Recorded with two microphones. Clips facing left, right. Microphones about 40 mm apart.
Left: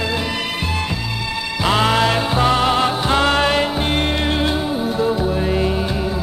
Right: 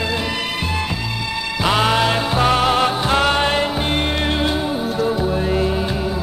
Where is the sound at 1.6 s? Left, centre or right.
Centre.